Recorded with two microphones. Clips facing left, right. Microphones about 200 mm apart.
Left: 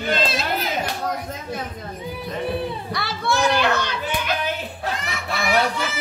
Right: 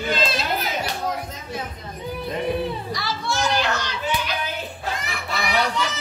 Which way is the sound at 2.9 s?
60° left (ahead or behind).